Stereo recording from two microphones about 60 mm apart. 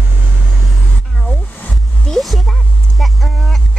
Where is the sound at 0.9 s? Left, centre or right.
Centre.